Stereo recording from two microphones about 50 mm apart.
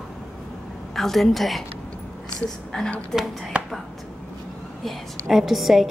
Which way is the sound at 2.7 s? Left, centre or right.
Centre.